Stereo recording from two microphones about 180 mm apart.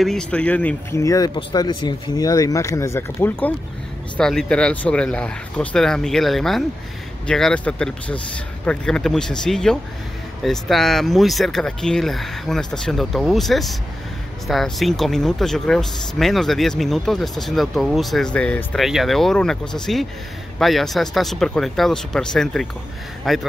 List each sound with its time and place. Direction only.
0.0 s speech: 5° left (ahead or behind)
1.0 s speech: 20° left (ahead or behind); by 23.4 s centre (ahead or behind)